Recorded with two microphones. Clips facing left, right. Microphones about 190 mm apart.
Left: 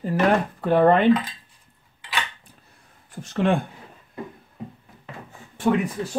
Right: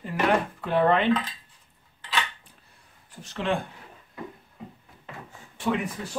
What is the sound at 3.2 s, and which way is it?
Speech, 50° left (ahead or behind).